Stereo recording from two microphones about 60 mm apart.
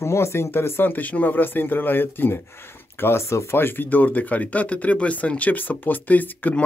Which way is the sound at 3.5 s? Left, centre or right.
Left.